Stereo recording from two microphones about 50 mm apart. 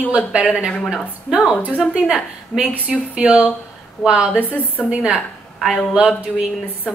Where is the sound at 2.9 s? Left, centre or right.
Right.